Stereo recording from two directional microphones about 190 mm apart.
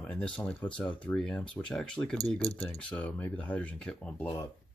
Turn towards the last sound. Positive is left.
turn(degrees=5)  # may be behind; listen again after turning